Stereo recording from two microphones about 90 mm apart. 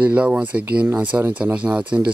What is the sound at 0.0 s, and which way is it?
A man's voice, 15° right (ahead or behind).